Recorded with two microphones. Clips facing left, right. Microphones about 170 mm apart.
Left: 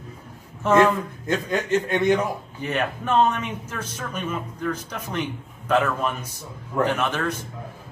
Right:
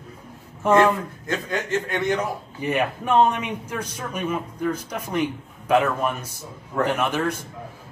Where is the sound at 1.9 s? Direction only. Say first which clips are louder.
Left 6 dB; 20° left (ahead or behind).